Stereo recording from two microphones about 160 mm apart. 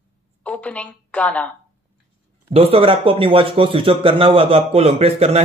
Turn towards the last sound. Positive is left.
turn(degrees=-40)  # may be behind; listen again after turning